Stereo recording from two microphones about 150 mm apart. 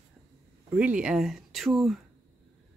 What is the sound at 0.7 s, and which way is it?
Speech, 10° right (ahead or behind).